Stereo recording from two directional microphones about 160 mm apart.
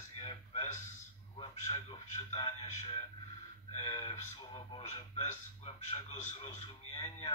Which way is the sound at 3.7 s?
35° left (ahead or behind).